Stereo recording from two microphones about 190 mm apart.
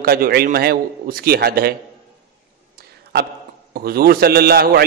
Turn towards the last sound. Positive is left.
turn(degrees=-55)  # may be behind; listen again after turning